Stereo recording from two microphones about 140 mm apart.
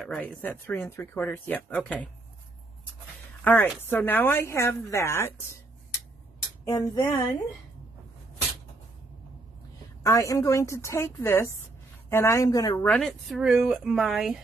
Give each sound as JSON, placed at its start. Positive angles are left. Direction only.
{"t": 0.0, "sound": "speech", "side_deg": 5}
{"t": 3.4, "sound": "speech", "side_deg": 10}
{"t": 6.6, "sound": "a woman's voice", "side_deg": 25}
{"t": 10.0, "sound": "a woman's voice", "side_deg": 25}
{"t": 12.8, "sound": "speech", "side_deg": 5}